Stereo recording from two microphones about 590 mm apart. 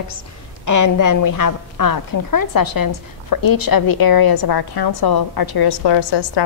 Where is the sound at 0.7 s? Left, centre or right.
Left.